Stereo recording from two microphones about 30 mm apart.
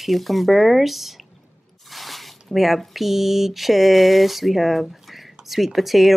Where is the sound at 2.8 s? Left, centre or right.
Centre.